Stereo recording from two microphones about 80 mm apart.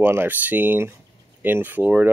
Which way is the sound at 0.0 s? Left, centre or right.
Right.